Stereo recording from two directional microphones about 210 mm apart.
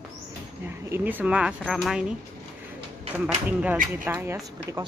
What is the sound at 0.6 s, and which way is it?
Speech, 10° right (ahead or behind).